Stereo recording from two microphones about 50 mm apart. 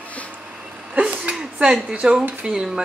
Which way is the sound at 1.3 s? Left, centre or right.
Centre.